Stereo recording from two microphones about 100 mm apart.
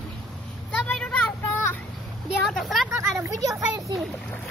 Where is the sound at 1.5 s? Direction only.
20° left (ahead or behind).